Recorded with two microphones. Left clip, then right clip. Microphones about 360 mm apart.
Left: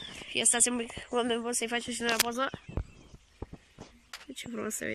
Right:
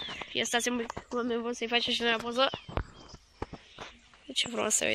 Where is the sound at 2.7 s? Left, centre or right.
Right.